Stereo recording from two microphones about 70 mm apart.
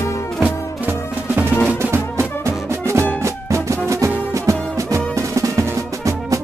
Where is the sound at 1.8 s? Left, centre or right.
Right.